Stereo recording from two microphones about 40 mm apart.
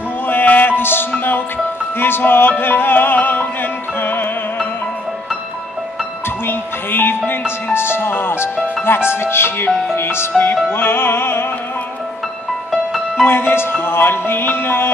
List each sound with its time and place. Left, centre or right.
0.3 s music: left
2.0 s music: left
6.4 s music: left
7.7 s speech: left
9.9 s speech: left
10.7 s music: left
13.2 s music: left